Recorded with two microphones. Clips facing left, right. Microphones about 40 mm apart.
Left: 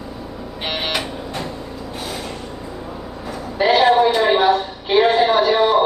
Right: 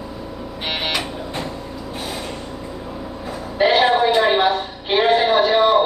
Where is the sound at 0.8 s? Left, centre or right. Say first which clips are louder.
Even; centre.